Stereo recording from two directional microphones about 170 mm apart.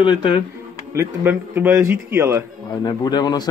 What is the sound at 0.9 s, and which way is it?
A man's voice, 10° right (ahead or behind).